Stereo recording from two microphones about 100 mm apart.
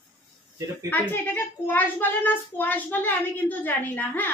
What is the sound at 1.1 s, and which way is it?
Speech, 20° left (ahead or behind).